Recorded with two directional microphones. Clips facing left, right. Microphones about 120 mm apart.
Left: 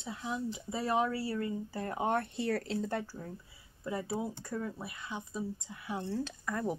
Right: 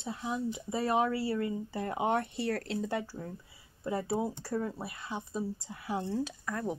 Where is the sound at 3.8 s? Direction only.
25° right (ahead or behind).